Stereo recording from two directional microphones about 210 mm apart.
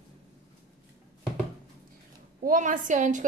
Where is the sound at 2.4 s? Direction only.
40° right (ahead or behind).